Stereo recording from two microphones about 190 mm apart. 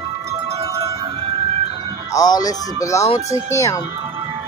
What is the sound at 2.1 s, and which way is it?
Speech, 20° left (ahead or behind).